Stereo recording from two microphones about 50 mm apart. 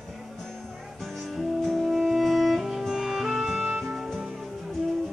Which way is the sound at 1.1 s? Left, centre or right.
Centre.